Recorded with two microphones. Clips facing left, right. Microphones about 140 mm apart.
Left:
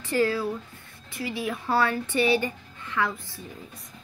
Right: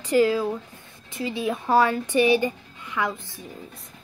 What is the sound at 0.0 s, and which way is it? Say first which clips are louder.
A woman's voice: right 4 dB; 15° right (ahead or behind).